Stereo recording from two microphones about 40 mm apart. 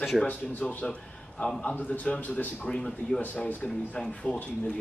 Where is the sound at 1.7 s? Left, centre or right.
Left.